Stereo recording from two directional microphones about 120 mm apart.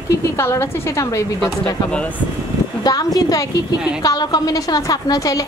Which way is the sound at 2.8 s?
35° left (ahead or behind).